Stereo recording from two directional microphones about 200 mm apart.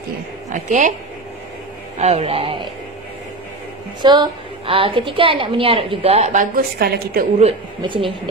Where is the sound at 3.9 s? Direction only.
20° right (ahead or behind); by 7.2 s 50° right (ahead or behind).